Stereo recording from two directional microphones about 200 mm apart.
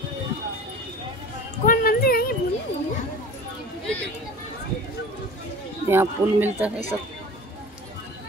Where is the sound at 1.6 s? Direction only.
50° left (ahead or behind).